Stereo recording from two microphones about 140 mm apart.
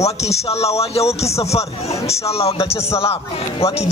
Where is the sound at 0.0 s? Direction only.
50° left (ahead or behind).